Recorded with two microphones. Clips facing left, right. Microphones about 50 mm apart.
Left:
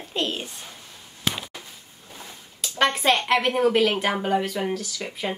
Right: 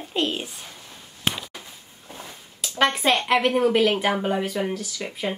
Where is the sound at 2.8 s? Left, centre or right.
Centre.